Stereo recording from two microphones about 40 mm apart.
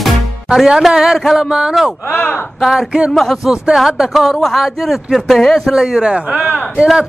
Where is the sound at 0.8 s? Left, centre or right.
Centre.